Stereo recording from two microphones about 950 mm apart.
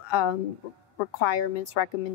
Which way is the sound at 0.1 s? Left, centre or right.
Left.